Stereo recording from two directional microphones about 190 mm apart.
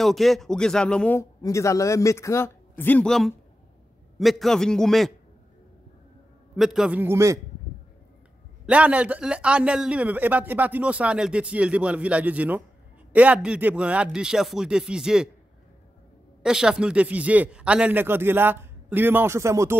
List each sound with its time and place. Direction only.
0.0 s a man's voice: centre (ahead or behind)
6.5 s a man's voice: centre (ahead or behind)
8.6 s a man's voice: 5° right (ahead or behind)
16.4 s a man's voice: 5° right (ahead or behind)